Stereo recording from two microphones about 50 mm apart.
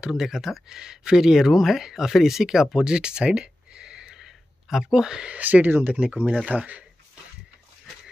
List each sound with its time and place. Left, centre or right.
0.1 s speech: centre
5.4 s speech: right
5.9 s speech: right